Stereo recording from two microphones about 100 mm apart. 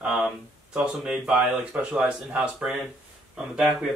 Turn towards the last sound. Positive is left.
turn(degrees=-5)  # may be behind; listen again after turning